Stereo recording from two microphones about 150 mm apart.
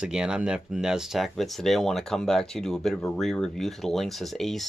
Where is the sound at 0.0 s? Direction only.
5° right (ahead or behind).